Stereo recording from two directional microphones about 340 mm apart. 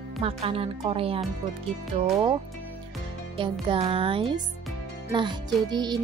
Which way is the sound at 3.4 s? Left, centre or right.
Centre.